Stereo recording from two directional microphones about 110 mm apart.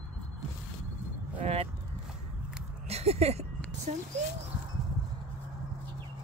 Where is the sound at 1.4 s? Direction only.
70° right (ahead or behind).